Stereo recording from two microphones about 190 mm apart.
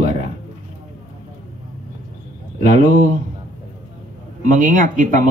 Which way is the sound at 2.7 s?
40° right (ahead or behind).